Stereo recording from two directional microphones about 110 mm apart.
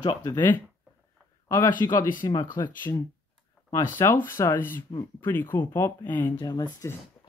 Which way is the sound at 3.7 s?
25° left (ahead or behind).